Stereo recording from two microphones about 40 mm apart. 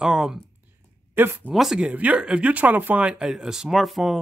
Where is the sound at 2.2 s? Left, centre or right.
Right.